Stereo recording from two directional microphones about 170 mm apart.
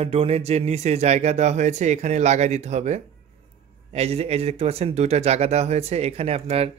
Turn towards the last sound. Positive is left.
turn(degrees=-35)  # may be behind; listen again after turning